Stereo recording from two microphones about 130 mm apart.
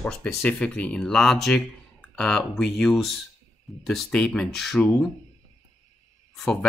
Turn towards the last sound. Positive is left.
turn(degrees=5)  # may be behind; listen again after turning